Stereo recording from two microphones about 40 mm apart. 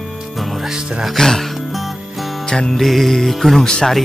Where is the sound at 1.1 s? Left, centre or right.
Centre.